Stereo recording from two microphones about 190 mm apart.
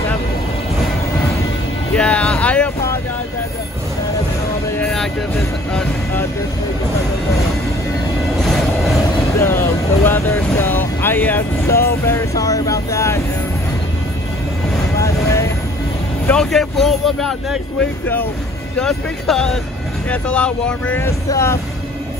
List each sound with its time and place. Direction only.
2.0 s vehicle: 5° left (ahead or behind)
4.7 s vehicle: centre (ahead or behind)
5.7 s speech: 5° left (ahead or behind)
8.4 s train: centre (ahead or behind)
9.4 s speech: 10° left (ahead or behind)
15.0 s vehicle: 15° left (ahead or behind)
16.3 s speech: centre (ahead or behind)
18.8 s speech: 5° left (ahead or behind)